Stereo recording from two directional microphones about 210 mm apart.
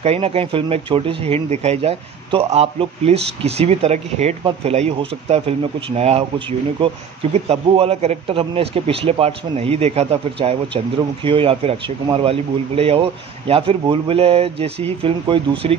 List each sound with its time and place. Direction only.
0.0 s speech: 30° right (ahead or behind)